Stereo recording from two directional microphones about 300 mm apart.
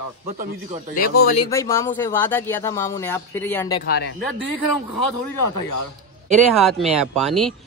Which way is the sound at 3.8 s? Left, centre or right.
Left.